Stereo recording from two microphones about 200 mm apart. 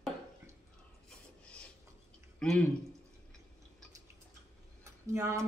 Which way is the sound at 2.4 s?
5° left (ahead or behind).